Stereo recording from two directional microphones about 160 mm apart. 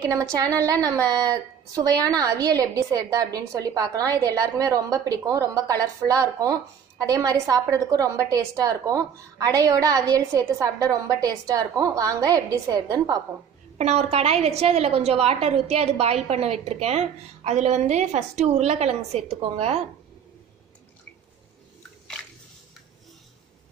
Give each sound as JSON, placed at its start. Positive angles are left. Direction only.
{"t": 0.0, "sound": "a woman's voice", "side_deg": -25}
{"t": 13.7, "sound": "a woman's voice", "side_deg": -40}